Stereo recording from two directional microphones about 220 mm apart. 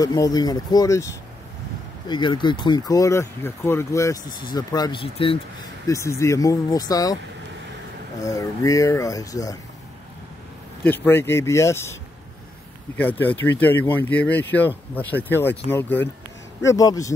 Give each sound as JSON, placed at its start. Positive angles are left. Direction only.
{"t": 0.0, "sound": "speech", "side_deg": 15}
{"t": 5.9, "sound": "speech", "side_deg": 15}
{"t": 8.2, "sound": "speech", "side_deg": 15}
{"t": 10.8, "sound": "speech", "side_deg": 10}